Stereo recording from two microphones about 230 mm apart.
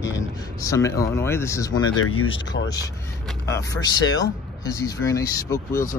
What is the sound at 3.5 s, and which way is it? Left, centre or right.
Speech, centre.